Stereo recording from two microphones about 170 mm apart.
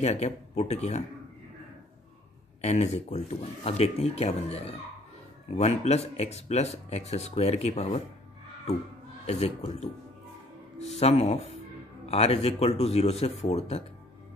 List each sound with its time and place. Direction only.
0.0 s speech: 40° left (ahead or behind)
2.6 s speech: 40° left (ahead or behind)
9.2 s speech: 40° left (ahead or behind)
11.0 s speech: 40° left (ahead or behind)